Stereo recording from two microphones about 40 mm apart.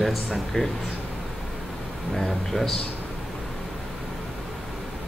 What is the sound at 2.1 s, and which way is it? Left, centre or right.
Speech, centre.